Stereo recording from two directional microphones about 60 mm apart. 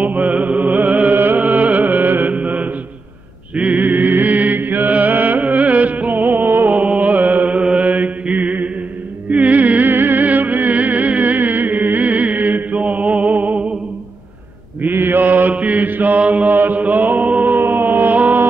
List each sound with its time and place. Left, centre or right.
0.0 s music: right
3.5 s mantra: right
9.3 s music: right
14.8 s chant: right